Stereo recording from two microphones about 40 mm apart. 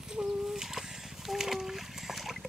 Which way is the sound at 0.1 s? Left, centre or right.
Centre.